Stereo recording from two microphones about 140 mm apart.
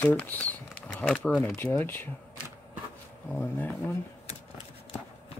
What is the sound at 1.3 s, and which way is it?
Speech, 10° left (ahead or behind).